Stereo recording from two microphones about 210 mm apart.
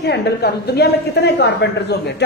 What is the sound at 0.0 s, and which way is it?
A woman's voice, 50° left (ahead or behind).